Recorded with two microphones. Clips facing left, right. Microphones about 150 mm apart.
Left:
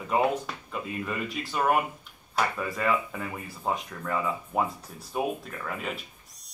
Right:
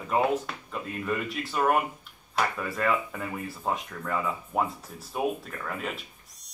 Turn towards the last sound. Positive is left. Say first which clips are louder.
# even
turn(degrees=0)  # may be behind; listen again after turning